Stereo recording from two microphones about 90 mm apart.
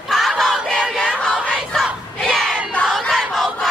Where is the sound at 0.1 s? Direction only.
Centre (ahead or behind).